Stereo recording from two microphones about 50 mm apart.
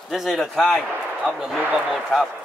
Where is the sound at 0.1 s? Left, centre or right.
Centre.